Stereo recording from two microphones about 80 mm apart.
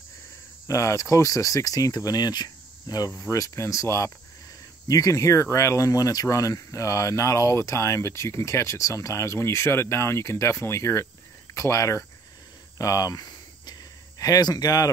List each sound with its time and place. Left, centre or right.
0.7 s speech: left
3.2 s speech: left
13.7 s a sound: left